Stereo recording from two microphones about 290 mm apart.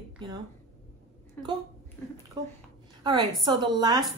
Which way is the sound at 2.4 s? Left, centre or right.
Centre.